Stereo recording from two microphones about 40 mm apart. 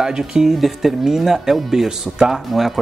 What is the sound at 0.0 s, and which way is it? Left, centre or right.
Speech, centre.